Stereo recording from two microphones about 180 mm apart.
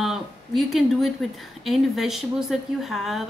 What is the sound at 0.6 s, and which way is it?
A woman's voice, centre (ahead or behind).